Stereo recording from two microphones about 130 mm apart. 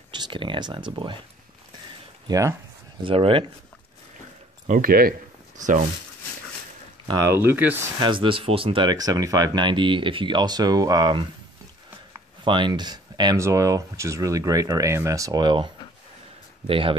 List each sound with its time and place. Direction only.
0.1 s speech: 35° right (ahead or behind)
2.2 s speech: 25° right (ahead or behind)
3.0 s speech: 45° right (ahead or behind)
4.6 s speech: 90° right
7.1 s speech: 25° right (ahead or behind)
8.0 s speech: 40° right (ahead or behind)
8.8 s speech: 30° right (ahead or behind)
12.4 s speech: 40° right (ahead or behind)